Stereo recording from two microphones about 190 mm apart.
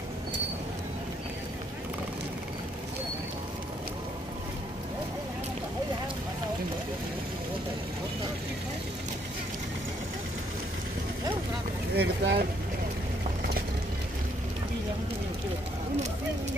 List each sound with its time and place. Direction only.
11.9 s boat: 60° right (ahead or behind)